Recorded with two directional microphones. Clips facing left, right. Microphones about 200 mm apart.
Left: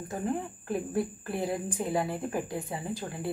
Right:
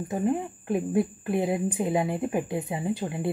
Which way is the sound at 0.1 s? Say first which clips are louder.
Right 5 dB; 20° right (ahead or behind).